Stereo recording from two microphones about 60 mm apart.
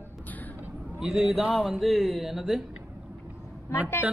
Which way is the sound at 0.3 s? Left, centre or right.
Left.